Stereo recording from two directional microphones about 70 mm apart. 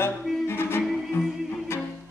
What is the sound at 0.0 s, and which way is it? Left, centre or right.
Music, left.